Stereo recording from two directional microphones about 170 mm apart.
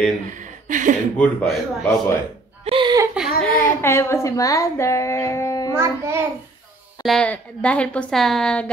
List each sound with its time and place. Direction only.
0.3 s speech: 50° right (ahead or behind)
1.1 s a woman's voice: 5° left (ahead or behind)
2.6 s a sound: 30° right (ahead or behind)
3.2 s a sound: 5° left (ahead or behind)
3.6 s speech: 15° left (ahead or behind)
5.8 s child singing: 15° right (ahead or behind)
7.0 s a woman's voice: 5° left (ahead or behind)